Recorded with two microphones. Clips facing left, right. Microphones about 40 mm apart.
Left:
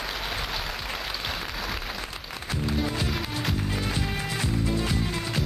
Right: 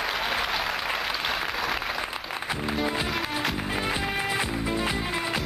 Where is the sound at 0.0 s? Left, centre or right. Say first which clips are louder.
Right 5 dB; centre.